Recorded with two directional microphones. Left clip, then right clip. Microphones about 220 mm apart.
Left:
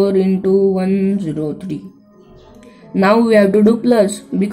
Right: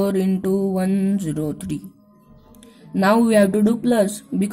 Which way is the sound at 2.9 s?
25° right (ahead or behind).